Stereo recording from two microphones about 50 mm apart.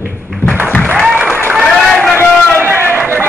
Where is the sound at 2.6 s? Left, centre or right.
Right.